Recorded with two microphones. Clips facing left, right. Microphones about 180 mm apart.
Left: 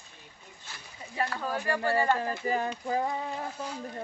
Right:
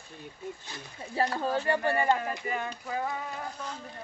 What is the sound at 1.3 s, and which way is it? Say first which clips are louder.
Speech: right 3 dB; 25° right (ahead or behind).